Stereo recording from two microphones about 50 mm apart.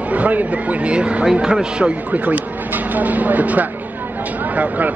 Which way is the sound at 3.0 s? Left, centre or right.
Right.